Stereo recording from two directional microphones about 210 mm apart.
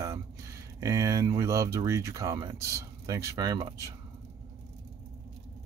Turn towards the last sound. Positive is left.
turn(degrees=-15)  # may be behind; listen again after turning